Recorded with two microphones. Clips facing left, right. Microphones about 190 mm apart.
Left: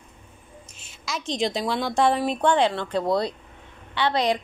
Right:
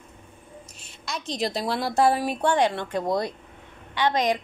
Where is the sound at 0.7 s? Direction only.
Centre (ahead or behind).